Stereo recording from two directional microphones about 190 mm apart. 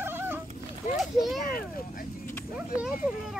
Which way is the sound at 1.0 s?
Centre (ahead or behind).